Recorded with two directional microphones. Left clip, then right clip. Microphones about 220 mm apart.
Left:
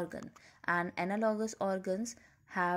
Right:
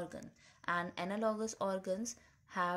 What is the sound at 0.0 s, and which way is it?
Speech, 30° left (ahead or behind).